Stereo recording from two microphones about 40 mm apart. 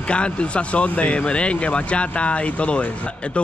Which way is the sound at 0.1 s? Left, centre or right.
Left.